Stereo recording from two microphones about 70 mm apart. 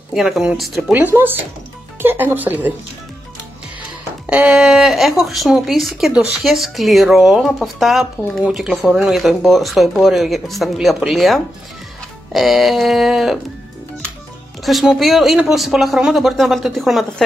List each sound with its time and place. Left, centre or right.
0.1 s speech: centre
1.1 s speech: right
4.3 s a sound: centre
4.6 s speech: centre
14.6 s speech: centre